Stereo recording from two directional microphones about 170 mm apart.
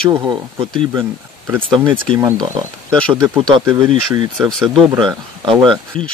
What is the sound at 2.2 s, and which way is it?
Speech, 20° right (ahead or behind).